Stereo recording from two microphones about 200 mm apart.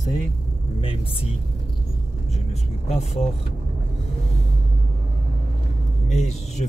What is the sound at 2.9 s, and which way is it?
Speech, 35° left (ahead or behind).